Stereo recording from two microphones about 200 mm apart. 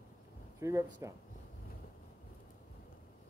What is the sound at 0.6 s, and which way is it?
Speech, 15° right (ahead or behind).